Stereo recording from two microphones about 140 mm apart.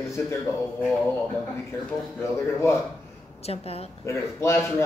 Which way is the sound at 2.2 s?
20° left (ahead or behind).